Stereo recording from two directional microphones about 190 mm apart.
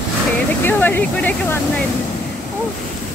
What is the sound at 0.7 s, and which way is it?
Speech, 10° left (ahead or behind).